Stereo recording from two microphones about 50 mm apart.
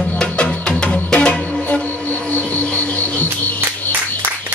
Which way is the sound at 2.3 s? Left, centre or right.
Left.